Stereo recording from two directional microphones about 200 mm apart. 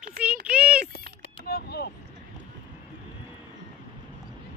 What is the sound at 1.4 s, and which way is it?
Boat, 50° left (ahead or behind).